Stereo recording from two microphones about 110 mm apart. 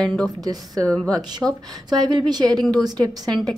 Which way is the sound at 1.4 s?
10° right (ahead or behind).